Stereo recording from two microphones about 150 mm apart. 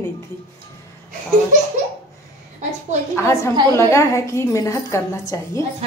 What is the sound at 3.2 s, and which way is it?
A woman's voice, 20° left (ahead or behind).